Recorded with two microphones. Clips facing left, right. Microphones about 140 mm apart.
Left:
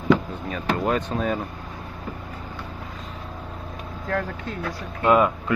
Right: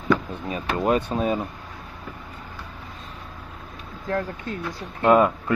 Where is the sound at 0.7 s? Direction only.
15° right (ahead or behind).